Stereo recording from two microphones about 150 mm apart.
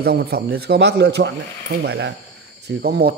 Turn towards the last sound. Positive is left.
turn(degrees=-90)